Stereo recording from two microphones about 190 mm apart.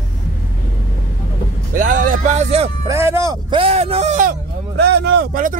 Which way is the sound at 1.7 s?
45° right (ahead or behind).